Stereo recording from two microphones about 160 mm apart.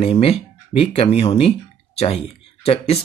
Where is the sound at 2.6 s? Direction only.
40° left (ahead or behind).